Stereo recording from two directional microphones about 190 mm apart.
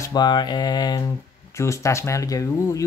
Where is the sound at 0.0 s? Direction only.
20° left (ahead or behind).